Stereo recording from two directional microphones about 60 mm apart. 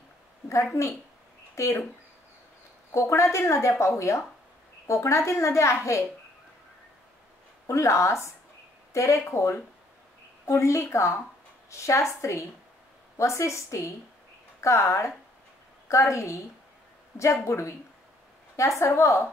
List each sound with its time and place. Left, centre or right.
1.5 s speech: left
2.9 s a child's voice: left
7.6 s a child's voice: left
18.8 s speech: left